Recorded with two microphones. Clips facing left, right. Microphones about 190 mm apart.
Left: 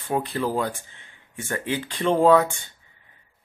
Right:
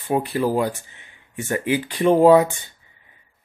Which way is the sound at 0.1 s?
15° right (ahead or behind).